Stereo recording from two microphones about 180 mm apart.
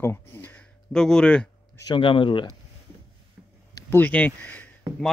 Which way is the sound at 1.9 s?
25° left (ahead or behind).